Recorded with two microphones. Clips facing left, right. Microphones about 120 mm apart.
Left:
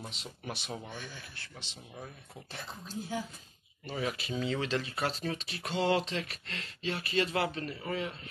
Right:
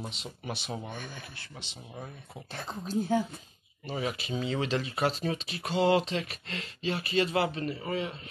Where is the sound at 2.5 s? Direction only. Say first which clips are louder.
Right 9 dB; 55° right (ahead or behind).